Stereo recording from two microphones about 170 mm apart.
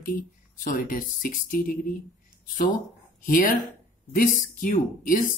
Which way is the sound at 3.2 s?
55° left (ahead or behind).